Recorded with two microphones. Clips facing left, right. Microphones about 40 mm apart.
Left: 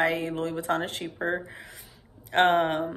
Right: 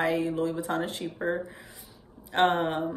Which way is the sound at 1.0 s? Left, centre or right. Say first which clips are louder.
Right 1 dB; centre.